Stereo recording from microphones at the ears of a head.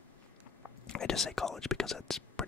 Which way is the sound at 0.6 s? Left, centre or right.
Left.